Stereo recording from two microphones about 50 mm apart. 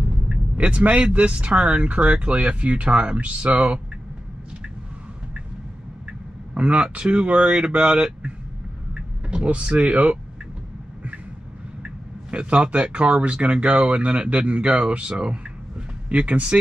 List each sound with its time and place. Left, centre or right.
0.6 s speech: right
6.5 s speech: right
9.3 s speech: right
12.3 s speech: right